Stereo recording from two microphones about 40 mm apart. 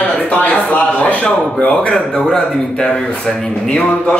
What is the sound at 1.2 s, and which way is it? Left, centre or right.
Speech, left.